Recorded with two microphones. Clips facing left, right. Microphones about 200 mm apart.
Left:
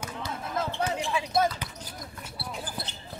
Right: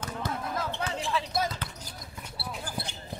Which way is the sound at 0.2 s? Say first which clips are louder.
Right 4 dB; 50° right (ahead or behind).